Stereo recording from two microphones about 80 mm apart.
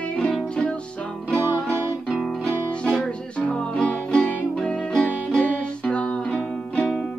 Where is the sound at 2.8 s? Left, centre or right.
Centre.